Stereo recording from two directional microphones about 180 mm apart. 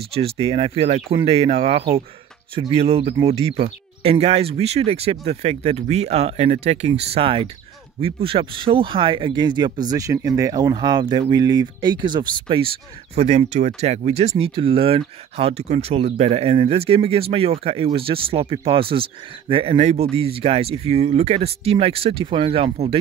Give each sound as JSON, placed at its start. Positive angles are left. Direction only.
{"t": 0.1, "sound": "speech", "side_deg": -35}